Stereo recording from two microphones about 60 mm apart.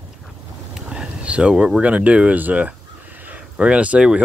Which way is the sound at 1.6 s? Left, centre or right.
Right.